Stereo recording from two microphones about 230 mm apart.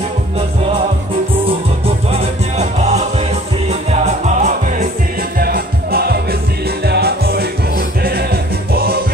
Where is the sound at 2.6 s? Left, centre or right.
Right.